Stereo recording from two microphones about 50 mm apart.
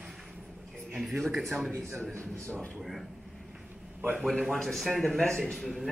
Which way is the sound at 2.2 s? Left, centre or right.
Left.